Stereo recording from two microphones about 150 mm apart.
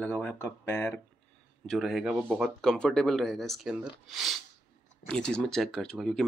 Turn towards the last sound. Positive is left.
turn(degrees=0)  # may be behind; listen again after turning